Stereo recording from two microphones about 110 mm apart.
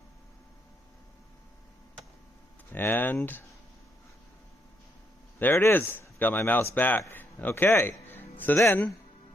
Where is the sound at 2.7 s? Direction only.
15° left (ahead or behind).